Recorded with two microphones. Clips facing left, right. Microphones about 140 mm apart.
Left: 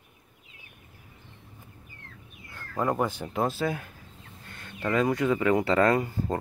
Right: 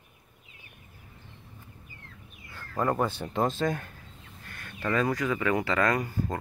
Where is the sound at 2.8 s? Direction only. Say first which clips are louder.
Even; 10° left (ahead or behind).